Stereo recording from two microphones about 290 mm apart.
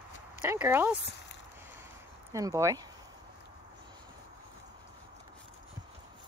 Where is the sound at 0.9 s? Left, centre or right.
Left.